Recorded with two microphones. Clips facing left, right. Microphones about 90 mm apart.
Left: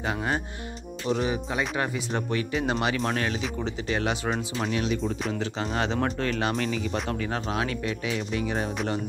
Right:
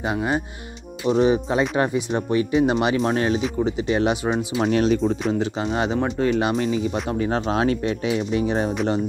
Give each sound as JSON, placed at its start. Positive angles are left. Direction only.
{"t": 0.0, "sound": "speech", "side_deg": -15}
{"t": 1.0, "sound": "speech", "side_deg": -30}
{"t": 2.0, "sound": "speech", "side_deg": -20}
{"t": 4.6, "sound": "speech", "side_deg": -40}
{"t": 5.8, "sound": "speech", "side_deg": -10}
{"t": 6.6, "sound": "speech", "side_deg": -25}